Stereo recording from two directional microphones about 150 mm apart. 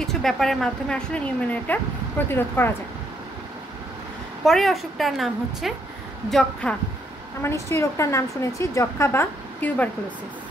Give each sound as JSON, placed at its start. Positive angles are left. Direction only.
{"t": 0.0, "sound": "speech", "side_deg": 0}
{"t": 4.5, "sound": "a woman's voice", "side_deg": 0}
{"t": 7.4, "sound": "a woman's voice", "side_deg": 20}